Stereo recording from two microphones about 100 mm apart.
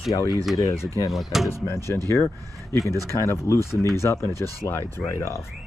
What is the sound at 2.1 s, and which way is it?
Speech, 25° left (ahead or behind).